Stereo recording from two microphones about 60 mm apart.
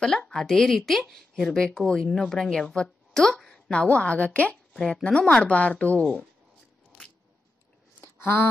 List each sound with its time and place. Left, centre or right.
0.3 s speech: centre
4.7 s speech: centre
5.0 s speech: centre
8.2 s a sound: left